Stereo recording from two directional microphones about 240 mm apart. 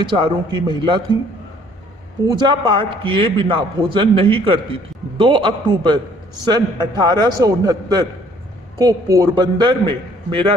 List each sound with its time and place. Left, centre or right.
0.0 s a man's voice: centre
2.2 s a man's voice: centre